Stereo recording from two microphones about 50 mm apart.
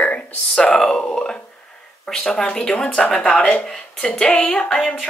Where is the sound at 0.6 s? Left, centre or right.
Centre.